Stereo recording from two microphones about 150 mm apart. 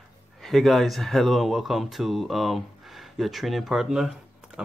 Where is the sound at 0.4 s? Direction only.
Centre (ahead or behind).